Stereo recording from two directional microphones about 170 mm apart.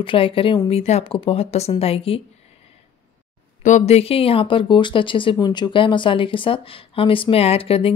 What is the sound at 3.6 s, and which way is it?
Speech, 45° left (ahead or behind).